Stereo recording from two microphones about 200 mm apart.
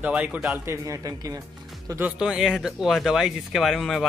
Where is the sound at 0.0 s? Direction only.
5° right (ahead or behind).